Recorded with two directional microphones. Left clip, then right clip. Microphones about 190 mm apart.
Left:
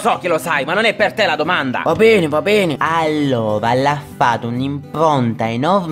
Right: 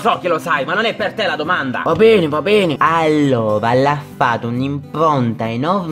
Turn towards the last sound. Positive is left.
turn(degrees=5)  # may be behind; listen again after turning